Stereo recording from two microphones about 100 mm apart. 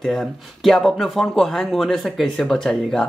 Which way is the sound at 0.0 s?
5° left (ahead or behind).